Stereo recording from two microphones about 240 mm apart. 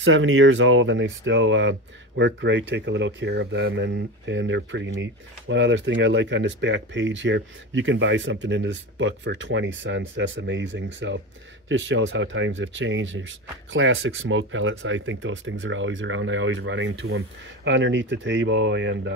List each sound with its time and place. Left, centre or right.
0.0 s speech: right